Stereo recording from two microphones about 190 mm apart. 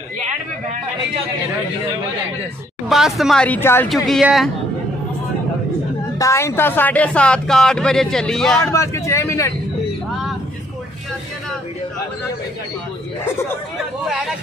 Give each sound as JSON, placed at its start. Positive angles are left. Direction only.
{"t": 2.9, "sound": "speech", "side_deg": 0}
{"t": 3.9, "sound": "speech", "side_deg": 0}
{"t": 6.1, "sound": "speech", "side_deg": 15}
{"t": 8.7, "sound": "speech", "side_deg": 15}
{"t": 14.0, "sound": "chatter", "side_deg": 0}